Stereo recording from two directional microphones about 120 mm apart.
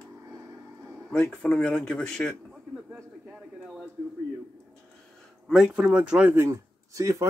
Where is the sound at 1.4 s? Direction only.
5° left (ahead or behind).